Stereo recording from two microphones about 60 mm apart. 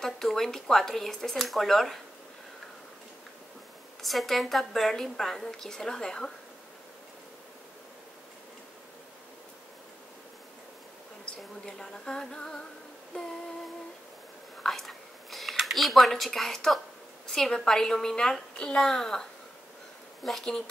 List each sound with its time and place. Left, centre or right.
0.0 s a woman's voice: centre
4.0 s a woman's voice: centre
11.6 s a sound: centre
13.1 s humming: centre
14.6 s a sound: centre
17.3 s a woman's voice: centre
20.2 s a woman's voice: centre